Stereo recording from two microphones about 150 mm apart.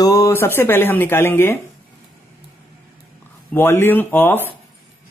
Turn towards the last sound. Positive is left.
turn(degrees=15)  # may be behind; listen again after turning